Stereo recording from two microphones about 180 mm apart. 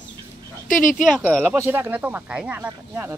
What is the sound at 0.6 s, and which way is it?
Speech, 50° left (ahead or behind).